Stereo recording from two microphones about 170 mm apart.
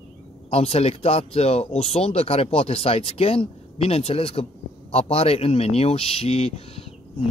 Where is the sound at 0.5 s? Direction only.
35° left (ahead or behind).